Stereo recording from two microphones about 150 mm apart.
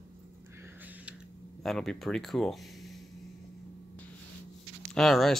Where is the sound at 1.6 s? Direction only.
Centre (ahead or behind).